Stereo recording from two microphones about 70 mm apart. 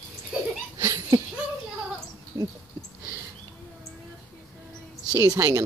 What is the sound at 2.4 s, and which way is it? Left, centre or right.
Dog, right.